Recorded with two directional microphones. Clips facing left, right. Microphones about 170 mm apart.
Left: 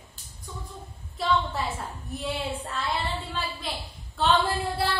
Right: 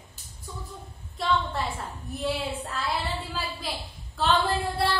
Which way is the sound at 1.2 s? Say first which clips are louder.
Left 1 dB; centre (ahead or behind).